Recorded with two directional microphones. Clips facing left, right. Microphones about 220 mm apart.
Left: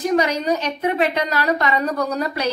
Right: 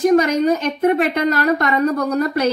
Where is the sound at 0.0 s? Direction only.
50° right (ahead or behind).